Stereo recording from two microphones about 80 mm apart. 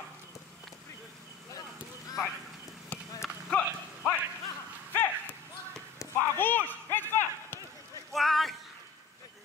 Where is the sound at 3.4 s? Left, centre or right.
Centre.